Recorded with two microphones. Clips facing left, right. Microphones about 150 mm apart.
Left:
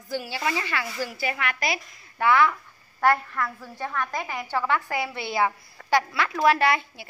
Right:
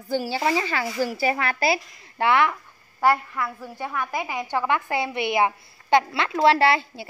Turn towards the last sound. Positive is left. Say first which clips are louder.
# right 3 dB
turn(degrees=-30)  # may be behind; listen again after turning